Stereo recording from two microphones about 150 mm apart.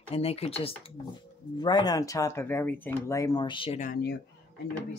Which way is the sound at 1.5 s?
30° left (ahead or behind).